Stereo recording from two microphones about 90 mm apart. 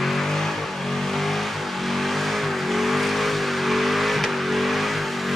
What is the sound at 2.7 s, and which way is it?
Vehicle, centre (ahead or behind).